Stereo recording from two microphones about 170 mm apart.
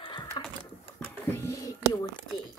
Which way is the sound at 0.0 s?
25° left (ahead or behind).